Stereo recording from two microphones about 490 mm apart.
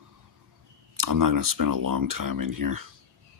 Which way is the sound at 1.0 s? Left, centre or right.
Right.